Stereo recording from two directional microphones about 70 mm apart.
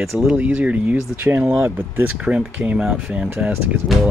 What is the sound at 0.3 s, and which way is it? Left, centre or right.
Speech, right.